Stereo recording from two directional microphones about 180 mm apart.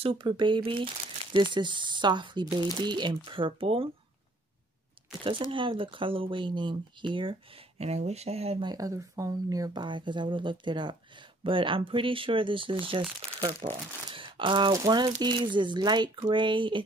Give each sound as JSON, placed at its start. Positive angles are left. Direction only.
{"t": 0.0, "sound": "speech", "side_deg": -30}
{"t": 5.5, "sound": "speech", "side_deg": -30}